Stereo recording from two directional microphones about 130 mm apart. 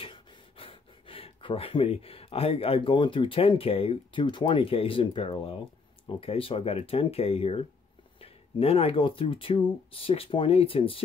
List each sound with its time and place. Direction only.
0.0 s speech: 40° left (ahead or behind)